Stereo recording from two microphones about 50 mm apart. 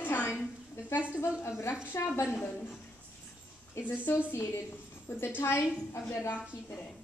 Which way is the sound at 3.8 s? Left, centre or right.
Left.